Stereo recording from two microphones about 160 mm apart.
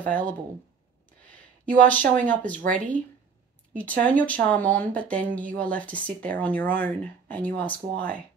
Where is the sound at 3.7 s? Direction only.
10° left (ahead or behind).